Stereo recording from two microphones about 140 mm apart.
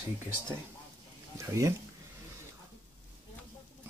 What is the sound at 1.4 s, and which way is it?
Speech, 20° right (ahead or behind).